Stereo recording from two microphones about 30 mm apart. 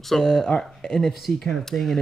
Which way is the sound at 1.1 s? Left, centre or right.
Centre.